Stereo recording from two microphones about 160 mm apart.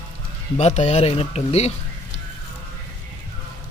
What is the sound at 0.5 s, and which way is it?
Speech, 45° left (ahead or behind).